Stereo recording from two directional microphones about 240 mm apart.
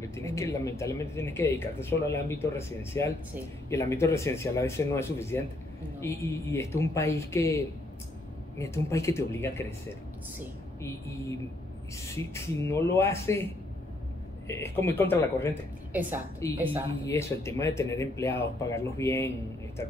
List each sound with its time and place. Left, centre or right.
0.1 s speech: centre
10.8 s speech: centre
14.5 s speech: centre
15.9 s a woman's voice: centre
16.4 s speech: centre